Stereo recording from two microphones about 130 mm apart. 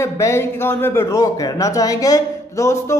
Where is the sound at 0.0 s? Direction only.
20° left (ahead or behind).